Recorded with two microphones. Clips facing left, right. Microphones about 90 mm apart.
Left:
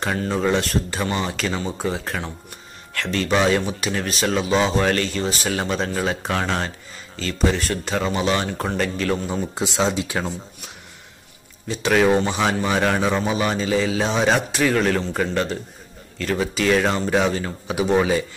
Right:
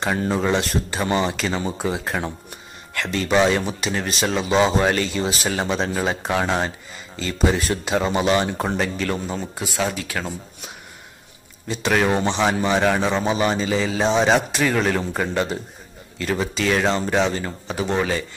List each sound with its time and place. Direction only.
0.3 s a man's voice: 5° right (ahead or behind)
9.6 s speech: 25° left (ahead or behind)
11.6 s a man's voice: centre (ahead or behind)